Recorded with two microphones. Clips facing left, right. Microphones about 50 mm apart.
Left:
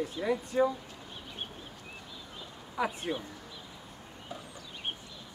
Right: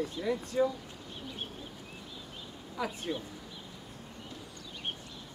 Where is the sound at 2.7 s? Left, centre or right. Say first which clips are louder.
Left 3 dB; centre.